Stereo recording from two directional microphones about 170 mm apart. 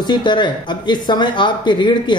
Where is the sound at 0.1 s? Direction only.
25° left (ahead or behind).